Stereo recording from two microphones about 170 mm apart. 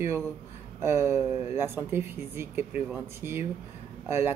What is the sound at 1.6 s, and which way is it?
Speech, 15° right (ahead or behind).